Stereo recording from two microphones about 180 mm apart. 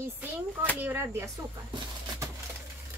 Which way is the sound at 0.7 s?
10° right (ahead or behind).